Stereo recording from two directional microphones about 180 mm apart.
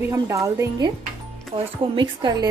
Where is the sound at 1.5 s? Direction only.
30° right (ahead or behind).